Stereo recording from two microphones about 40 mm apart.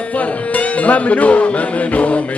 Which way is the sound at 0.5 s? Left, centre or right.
Left.